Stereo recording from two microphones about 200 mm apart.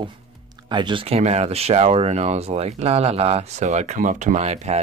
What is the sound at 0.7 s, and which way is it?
Speech, 25° right (ahead or behind).